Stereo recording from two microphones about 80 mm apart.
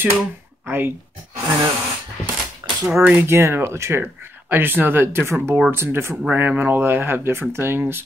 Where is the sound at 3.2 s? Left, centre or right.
Right.